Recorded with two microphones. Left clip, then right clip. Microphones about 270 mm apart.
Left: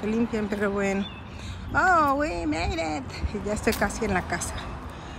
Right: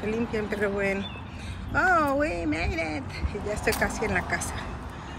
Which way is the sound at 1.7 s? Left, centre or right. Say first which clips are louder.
Left 2 dB; centre.